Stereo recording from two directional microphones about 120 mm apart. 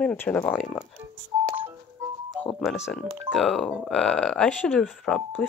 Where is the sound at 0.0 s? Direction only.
15° left (ahead or behind).